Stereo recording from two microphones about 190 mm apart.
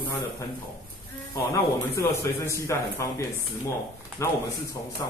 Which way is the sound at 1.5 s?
15° left (ahead or behind).